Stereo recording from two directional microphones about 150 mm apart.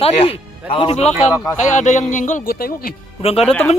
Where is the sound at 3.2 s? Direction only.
45° left (ahead or behind).